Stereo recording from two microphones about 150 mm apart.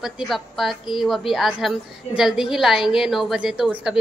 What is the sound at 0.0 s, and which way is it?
A woman's voice, centre (ahead or behind).